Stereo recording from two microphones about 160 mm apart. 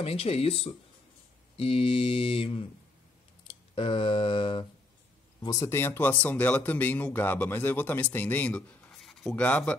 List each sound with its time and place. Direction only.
0.0 s mantra: 40° left (ahead or behind)
3.7 s mantra: 35° left (ahead or behind)
5.4 s speech: 20° left (ahead or behind)